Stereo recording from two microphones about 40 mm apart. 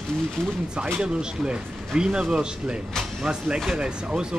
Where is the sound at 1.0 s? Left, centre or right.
Right.